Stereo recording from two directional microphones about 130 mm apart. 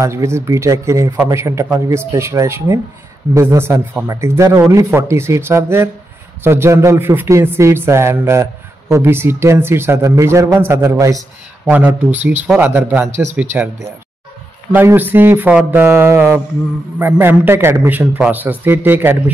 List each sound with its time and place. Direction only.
0.0 s a man's voice: 20° right (ahead or behind)
11.7 s a man's voice: 15° right (ahead or behind)
14.7 s a man's voice: 15° right (ahead or behind)